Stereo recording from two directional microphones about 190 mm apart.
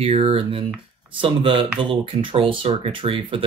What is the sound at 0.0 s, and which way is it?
Speech, 30° right (ahead or behind).